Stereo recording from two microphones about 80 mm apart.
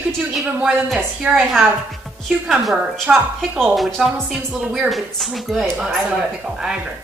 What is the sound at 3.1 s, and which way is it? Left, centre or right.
Speech, centre.